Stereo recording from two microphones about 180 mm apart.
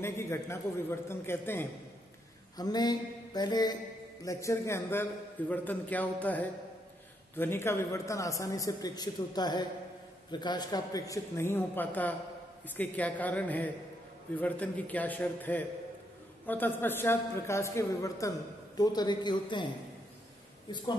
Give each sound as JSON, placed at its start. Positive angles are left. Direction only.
{"t": 0.0, "sound": "a man's voice", "side_deg": 15}